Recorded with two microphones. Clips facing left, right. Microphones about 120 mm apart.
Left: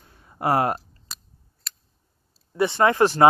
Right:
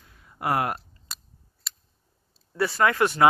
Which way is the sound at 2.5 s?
25° left (ahead or behind).